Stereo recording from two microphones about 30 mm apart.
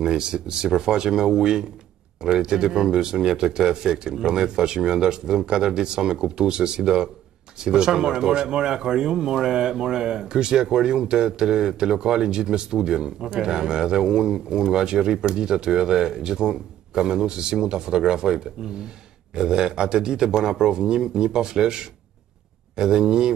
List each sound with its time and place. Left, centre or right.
0.0 s speech: right